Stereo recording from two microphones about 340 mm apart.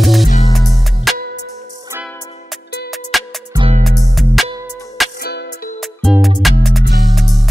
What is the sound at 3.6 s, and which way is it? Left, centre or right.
Music, centre.